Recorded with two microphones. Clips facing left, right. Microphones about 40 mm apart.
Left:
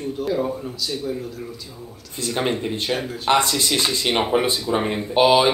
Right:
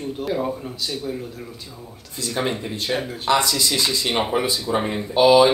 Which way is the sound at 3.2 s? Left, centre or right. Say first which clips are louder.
Left 1 dB; left.